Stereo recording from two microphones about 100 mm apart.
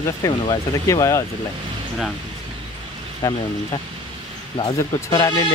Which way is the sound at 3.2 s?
35° left (ahead or behind).